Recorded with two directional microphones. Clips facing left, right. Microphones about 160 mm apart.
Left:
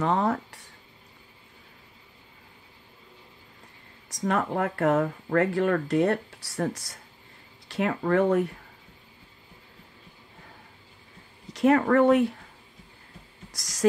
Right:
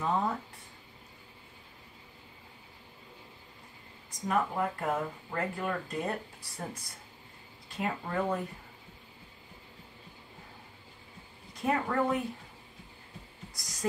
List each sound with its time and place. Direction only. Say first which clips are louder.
0.0 s speech: left 6 dB; 80° left
4.1 s speech: left 4 dB; 80° left
11.5 s speech: left 10 dB; 80° left
13.5 s a sound: left 4 dB; 90° left